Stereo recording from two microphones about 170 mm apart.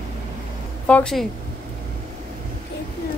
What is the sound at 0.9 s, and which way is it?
Speech, 5° left (ahead or behind).